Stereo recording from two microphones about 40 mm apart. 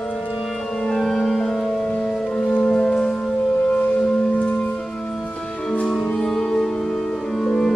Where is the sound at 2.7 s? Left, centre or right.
Left.